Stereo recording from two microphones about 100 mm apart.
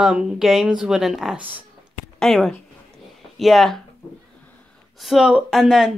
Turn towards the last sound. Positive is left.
turn(degrees=-5)  # may be behind; listen again after turning